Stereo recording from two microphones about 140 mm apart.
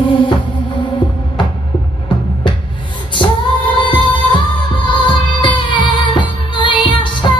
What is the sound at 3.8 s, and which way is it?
Music, 35° left (ahead or behind).